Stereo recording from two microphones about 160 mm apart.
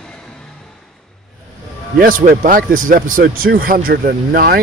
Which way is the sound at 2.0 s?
60° right (ahead or behind).